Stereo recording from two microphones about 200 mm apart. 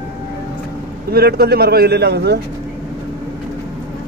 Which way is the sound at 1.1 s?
50° right (ahead or behind).